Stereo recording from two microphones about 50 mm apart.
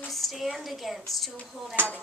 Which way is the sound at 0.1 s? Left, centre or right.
Centre.